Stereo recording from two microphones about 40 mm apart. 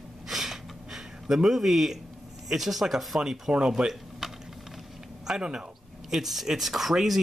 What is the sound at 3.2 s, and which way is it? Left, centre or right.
Speech, centre.